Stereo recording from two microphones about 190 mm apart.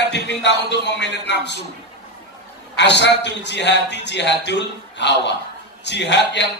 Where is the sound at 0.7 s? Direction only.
65° left (ahead or behind).